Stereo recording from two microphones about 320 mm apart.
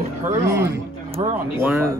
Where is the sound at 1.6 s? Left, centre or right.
Centre.